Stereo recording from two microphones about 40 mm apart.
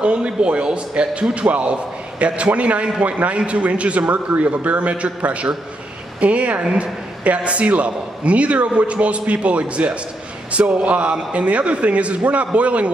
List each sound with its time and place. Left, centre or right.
0.0 s a man's voice: right